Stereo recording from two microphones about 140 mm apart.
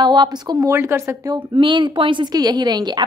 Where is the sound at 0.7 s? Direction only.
20° right (ahead or behind).